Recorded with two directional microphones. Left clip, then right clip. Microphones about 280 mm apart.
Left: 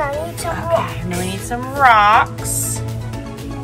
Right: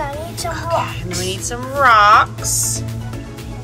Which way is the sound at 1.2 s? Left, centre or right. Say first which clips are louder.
Right 1 dB; centre.